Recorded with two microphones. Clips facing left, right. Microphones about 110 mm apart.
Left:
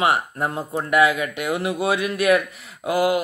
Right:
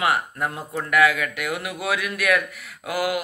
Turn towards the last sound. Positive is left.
turn(degrees=25)  # may be behind; listen again after turning